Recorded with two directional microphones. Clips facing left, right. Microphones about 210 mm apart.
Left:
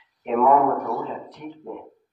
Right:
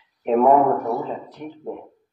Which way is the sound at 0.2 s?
35° right (ahead or behind).